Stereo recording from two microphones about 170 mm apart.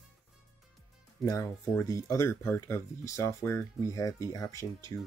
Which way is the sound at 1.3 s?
15° left (ahead or behind).